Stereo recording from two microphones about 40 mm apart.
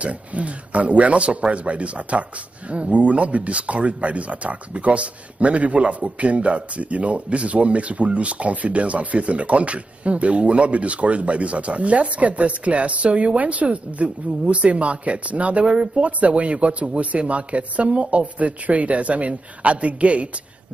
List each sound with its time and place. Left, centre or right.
0.0 s speech: right